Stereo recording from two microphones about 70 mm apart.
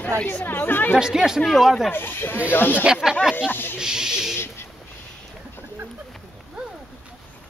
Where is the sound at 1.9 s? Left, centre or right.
Left.